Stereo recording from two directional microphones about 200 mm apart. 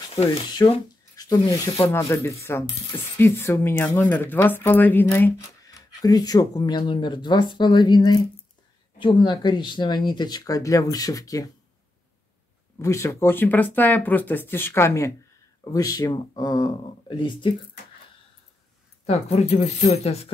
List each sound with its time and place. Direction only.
0.2 s speech: 20° left (ahead or behind)
12.7 s speech: 15° left (ahead or behind)
19.0 s speech: 30° left (ahead or behind)